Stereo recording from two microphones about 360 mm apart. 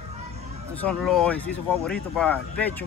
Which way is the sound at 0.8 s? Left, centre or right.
Centre.